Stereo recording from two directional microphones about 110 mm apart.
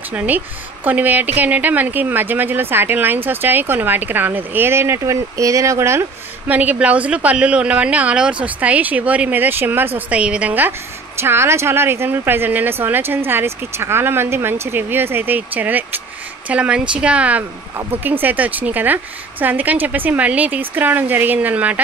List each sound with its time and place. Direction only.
0.1 s a woman's voice: 15° right (ahead or behind)